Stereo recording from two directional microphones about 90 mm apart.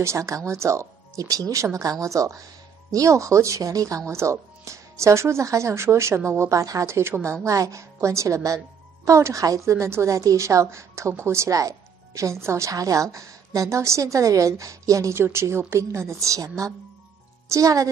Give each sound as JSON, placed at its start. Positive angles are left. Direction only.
{"t": 0.0, "sound": "a woman's voice", "side_deg": -35}